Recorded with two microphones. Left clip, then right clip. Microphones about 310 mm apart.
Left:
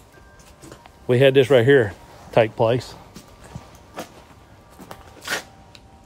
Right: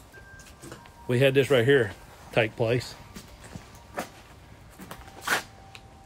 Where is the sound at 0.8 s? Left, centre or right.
Left.